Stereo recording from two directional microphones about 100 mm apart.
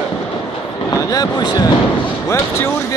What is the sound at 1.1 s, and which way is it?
Speech, 40° left (ahead or behind).